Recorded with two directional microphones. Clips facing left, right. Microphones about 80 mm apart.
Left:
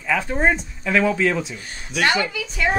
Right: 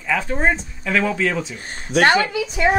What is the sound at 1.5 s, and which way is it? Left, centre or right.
Speech, right.